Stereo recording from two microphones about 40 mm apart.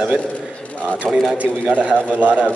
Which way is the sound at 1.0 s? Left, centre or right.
Centre.